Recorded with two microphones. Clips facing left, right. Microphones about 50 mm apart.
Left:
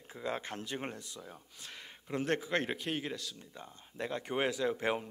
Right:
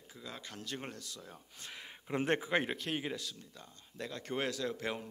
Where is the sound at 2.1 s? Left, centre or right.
Right.